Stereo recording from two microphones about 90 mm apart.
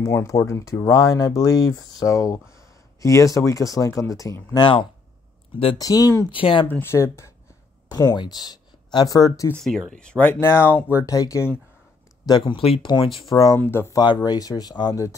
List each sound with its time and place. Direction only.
0.0 s speech: 35° left (ahead or behind)
4.6 s speech: 70° left (ahead or behind)
5.8 s speech: 45° left (ahead or behind)
6.3 s speech: 75° left (ahead or behind)
6.7 s speech: 25° left (ahead or behind)
7.9 s speech: 50° left (ahead or behind)
9.6 s speech: 5° left (ahead or behind)
10.4 s speech: 25° left (ahead or behind)
11.0 s speech: 40° left (ahead or behind)
12.3 s speech: 50° left (ahead or behind)
12.5 s speech: 85° left
13.6 s speech: 25° left (ahead or behind)
13.9 s speech: 45° left (ahead or behind)